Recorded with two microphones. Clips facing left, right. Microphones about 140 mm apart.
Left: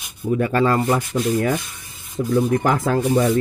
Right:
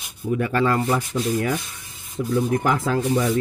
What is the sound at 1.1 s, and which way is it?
Speech, 50° left (ahead or behind).